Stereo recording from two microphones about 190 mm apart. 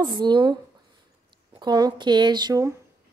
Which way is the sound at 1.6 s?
20° right (ahead or behind).